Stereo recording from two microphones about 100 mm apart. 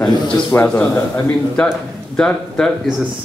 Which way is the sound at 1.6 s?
10° left (ahead or behind).